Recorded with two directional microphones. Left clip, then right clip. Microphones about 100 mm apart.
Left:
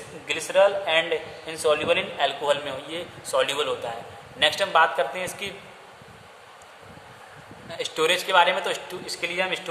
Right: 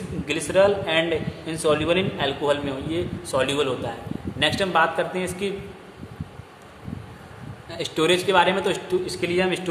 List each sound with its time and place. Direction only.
0.3 s a man's voice: 15° left (ahead or behind)
7.7 s a man's voice: 15° left (ahead or behind)